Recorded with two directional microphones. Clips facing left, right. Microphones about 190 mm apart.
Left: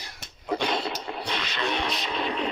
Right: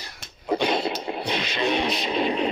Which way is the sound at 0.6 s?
10° right (ahead or behind).